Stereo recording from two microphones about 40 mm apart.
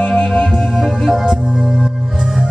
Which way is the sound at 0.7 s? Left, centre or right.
Centre.